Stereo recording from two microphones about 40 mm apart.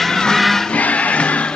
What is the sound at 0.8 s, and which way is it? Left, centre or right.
Music, left.